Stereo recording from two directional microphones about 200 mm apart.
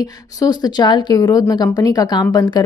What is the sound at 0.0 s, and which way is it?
A woman's voice, 20° left (ahead or behind).